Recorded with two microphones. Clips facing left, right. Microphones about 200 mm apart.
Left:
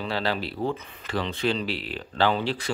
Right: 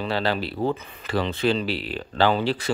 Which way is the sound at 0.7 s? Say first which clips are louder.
Right 3 dB; 40° right (ahead or behind).